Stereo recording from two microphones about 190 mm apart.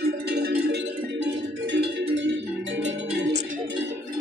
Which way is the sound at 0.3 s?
60° right (ahead or behind).